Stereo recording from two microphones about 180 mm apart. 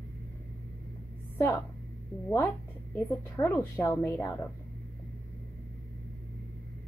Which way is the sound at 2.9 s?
15° left (ahead or behind).